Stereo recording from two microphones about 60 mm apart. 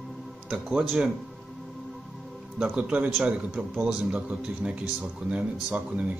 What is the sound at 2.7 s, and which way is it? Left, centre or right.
Speech, right.